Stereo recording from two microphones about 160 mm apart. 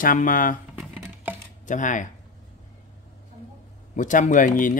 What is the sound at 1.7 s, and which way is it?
Speech, 50° left (ahead or behind).